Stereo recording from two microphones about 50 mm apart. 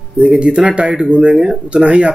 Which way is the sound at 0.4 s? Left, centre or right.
Right.